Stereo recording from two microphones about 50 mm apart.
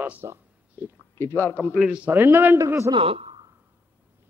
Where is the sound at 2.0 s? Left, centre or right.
Right.